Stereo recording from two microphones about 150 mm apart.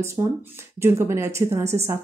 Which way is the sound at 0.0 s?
20° right (ahead or behind).